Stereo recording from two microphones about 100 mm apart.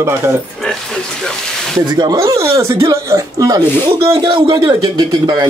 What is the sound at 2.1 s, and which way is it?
Speech, 30° right (ahead or behind).